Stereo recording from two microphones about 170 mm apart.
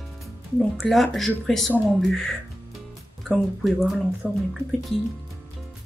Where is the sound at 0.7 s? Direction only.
Centre (ahead or behind).